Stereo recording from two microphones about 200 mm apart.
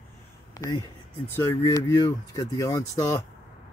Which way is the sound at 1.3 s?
15° left (ahead or behind).